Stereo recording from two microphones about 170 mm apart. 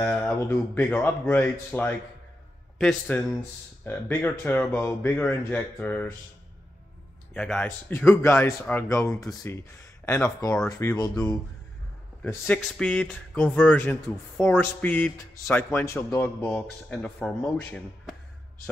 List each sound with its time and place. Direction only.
0.0 s a man's voice: 10° left (ahead or behind)
7.3 s speech: 5° left (ahead or behind)
12.2 s speech: 10° left (ahead or behind)